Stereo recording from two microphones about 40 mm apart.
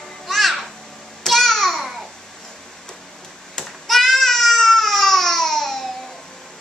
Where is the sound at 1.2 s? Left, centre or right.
Centre.